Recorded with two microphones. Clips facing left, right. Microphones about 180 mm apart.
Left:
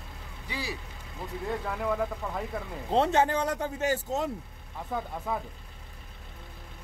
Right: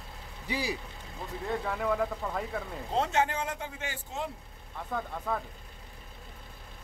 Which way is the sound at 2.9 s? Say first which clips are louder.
Left 4 dB; 35° left (ahead or behind).